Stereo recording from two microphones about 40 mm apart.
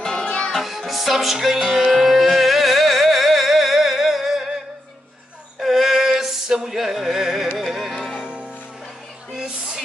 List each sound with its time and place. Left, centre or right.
0.2 s music: left
0.6 s music: centre
5.6 s a sound: centre
7.5 s music: centre